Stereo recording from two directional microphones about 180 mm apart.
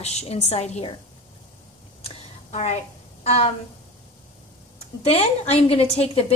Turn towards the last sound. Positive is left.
turn(degrees=35)  # may be behind; listen again after turning